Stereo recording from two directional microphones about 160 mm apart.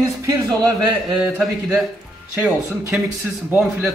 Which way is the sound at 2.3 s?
15° right (ahead or behind).